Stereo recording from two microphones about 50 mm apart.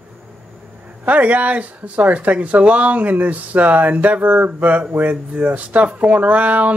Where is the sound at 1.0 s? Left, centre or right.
Right.